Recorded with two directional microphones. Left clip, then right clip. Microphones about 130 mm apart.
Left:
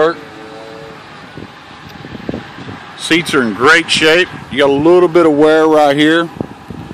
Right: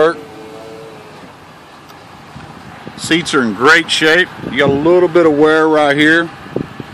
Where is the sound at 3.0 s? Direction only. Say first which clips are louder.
Left 1 dB; 5° left (ahead or behind).